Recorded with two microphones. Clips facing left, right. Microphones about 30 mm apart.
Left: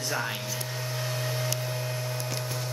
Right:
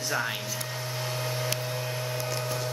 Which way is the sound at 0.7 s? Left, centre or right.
Centre.